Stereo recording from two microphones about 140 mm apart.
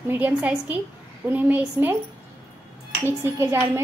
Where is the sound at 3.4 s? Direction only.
20° right (ahead or behind).